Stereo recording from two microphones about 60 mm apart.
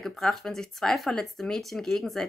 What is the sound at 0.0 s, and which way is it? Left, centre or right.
Speech, centre.